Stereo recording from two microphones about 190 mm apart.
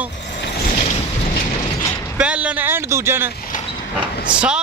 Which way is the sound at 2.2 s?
5° right (ahead or behind).